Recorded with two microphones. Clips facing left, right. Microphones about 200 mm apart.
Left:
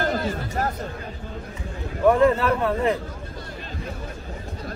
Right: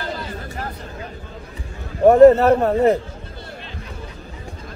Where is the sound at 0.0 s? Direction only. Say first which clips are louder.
Left 5 dB; 50° left (ahead or behind).